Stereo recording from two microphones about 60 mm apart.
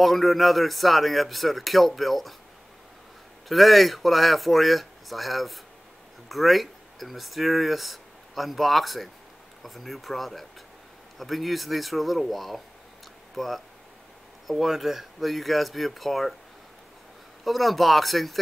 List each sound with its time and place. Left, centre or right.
0.0 s speech: centre
3.4 s speech: centre
17.5 s speech: centre